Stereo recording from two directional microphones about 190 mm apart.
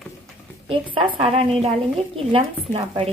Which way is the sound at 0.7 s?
25° right (ahead or behind).